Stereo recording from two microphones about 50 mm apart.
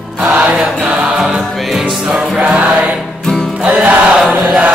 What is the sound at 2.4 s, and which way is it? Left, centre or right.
Music, right.